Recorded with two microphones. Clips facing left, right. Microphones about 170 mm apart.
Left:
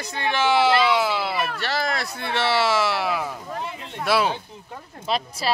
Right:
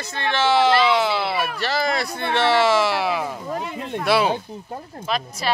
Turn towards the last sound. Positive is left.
turn(degrees=30)  # may be behind; listen again after turning